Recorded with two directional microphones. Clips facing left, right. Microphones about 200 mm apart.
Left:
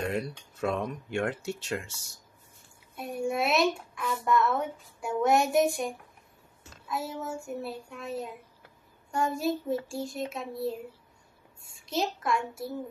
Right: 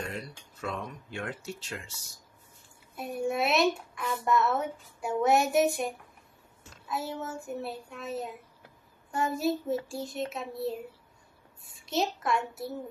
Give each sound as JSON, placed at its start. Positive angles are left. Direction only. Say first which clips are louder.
{"t": 0.0, "sound": "speech", "louder": "left 7 dB", "side_deg": 55}
{"t": 1.1, "sound": "speech", "louder": "left 7 dB", "side_deg": 65}
{"t": 3.0, "sound": "a child's voice", "louder": "even", "side_deg": 0}